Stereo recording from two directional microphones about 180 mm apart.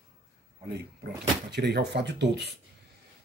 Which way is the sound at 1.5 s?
65° right (ahead or behind).